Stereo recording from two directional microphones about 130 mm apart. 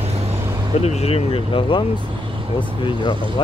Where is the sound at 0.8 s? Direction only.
55° left (ahead or behind).